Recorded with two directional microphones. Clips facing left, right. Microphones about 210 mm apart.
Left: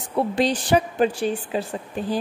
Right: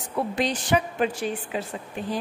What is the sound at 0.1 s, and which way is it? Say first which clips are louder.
A woman's voice: left 5 dB; 30° left (ahead or behind).